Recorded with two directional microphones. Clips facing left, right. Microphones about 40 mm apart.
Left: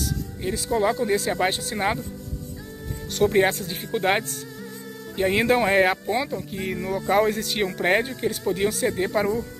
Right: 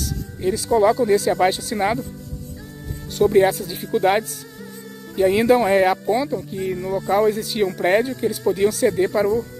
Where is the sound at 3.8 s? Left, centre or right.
Left.